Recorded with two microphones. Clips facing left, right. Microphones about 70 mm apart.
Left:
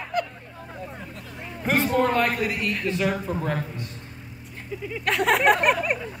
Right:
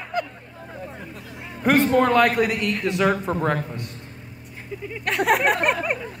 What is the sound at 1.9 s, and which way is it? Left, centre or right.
Speech, right.